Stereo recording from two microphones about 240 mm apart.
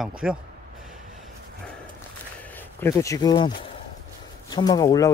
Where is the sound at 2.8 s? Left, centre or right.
Centre.